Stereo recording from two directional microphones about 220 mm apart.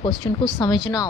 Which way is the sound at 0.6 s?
15° left (ahead or behind).